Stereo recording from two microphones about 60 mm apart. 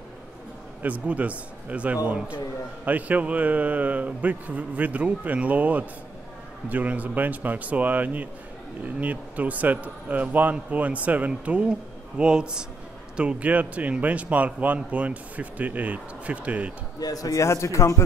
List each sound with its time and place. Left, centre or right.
0.8 s a man's voice: right
17.0 s a man's voice: left